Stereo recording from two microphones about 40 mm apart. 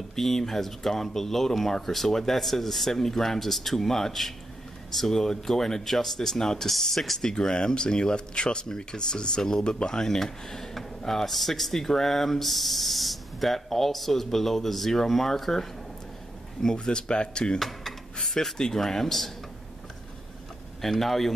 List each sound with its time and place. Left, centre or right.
0.1 s speech: centre
7.2 s speech: centre
16.7 s speech: left
17.6 s speech: centre
20.8 s speech: centre